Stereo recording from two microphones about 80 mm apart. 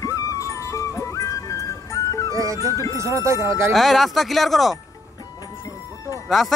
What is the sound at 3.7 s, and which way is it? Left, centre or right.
Speech, centre.